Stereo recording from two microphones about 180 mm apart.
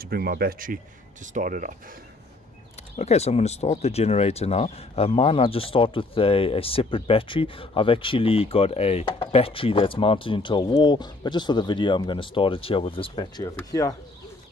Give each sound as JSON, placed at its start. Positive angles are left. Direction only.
{"t": 0.0, "sound": "speech", "side_deg": -55}
{"t": 3.0, "sound": "speech", "side_deg": 35}